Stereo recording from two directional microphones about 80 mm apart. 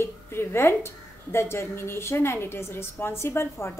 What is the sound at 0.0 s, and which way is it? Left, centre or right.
A woman's voice, left.